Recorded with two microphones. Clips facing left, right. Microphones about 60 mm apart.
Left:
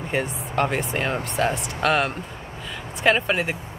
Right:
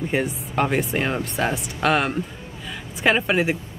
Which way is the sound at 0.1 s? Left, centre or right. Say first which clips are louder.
Left 2 dB; centre.